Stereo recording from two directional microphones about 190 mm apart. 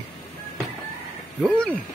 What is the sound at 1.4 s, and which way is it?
Speech, 5° right (ahead or behind).